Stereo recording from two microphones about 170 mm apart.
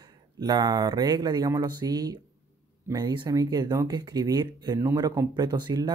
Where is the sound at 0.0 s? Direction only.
25° right (ahead or behind).